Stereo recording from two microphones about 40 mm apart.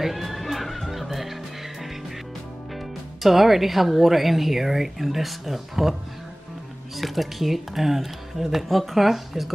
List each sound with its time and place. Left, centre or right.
0.0 s music: centre
3.2 s speech: centre
7.0 s speech: centre